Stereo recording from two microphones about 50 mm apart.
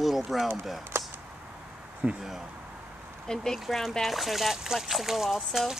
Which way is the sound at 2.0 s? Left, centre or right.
Right.